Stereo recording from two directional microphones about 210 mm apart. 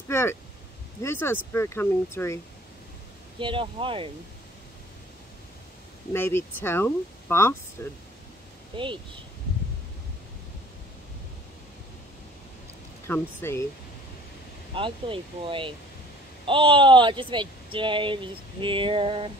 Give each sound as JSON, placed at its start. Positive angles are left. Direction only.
{"t": 0.1, "sound": "speech", "side_deg": 10}
{"t": 3.3, "sound": "speech", "side_deg": -25}
{"t": 6.1, "sound": "speech", "side_deg": 10}
{"t": 8.7, "sound": "speech", "side_deg": -25}
{"t": 13.0, "sound": "speech", "side_deg": 10}
{"t": 14.7, "sound": "speech", "side_deg": -25}